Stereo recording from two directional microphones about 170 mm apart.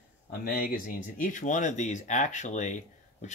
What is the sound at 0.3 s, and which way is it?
Speech, 60° left (ahead or behind).